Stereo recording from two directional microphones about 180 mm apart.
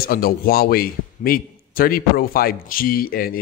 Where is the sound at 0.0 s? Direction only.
55° left (ahead or behind).